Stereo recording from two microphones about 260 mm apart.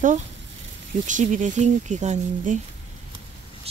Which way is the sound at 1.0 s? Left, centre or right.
Right.